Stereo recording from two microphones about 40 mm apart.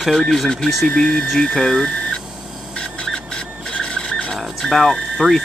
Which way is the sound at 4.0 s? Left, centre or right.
Left.